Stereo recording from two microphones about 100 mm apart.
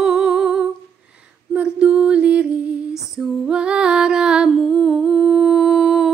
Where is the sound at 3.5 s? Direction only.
10° right (ahead or behind).